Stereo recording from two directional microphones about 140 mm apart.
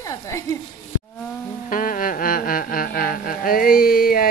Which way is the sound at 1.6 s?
75° left (ahead or behind).